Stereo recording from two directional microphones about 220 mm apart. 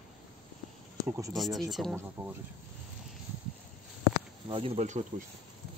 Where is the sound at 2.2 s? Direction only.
25° right (ahead or behind).